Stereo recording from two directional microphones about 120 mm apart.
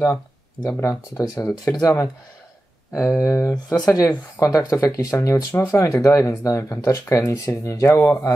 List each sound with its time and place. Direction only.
0.7 s speech: 20° left (ahead or behind)